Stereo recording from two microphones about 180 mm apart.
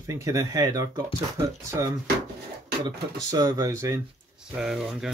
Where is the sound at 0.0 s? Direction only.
15° right (ahead or behind).